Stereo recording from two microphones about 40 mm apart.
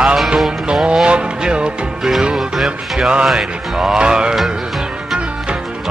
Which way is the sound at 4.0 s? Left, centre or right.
Right.